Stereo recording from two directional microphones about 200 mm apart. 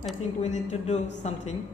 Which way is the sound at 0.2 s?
35° left (ahead or behind).